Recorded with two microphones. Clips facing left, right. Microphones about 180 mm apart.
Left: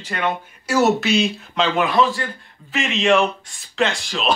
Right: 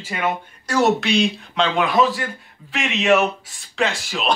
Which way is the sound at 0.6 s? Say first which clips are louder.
Left 1 dB; 5° left (ahead or behind).